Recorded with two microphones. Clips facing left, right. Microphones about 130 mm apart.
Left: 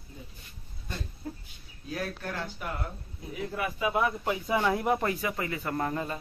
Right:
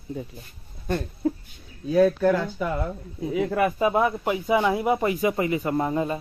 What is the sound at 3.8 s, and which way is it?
Speech, 35° right (ahead or behind).